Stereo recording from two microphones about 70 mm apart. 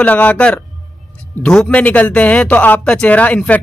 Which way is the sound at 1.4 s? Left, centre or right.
Centre.